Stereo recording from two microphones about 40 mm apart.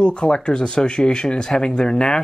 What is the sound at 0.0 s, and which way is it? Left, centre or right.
Speech, left.